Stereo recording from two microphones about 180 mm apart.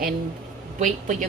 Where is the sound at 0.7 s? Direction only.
45° right (ahead or behind).